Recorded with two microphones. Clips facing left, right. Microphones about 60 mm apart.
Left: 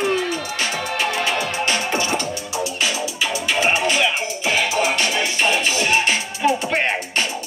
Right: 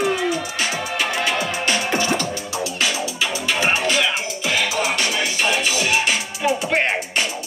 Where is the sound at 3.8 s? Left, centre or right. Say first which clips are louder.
Left 1 dB; left.